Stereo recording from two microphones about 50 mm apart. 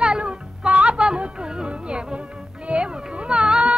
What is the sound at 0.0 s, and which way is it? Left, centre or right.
Music, centre.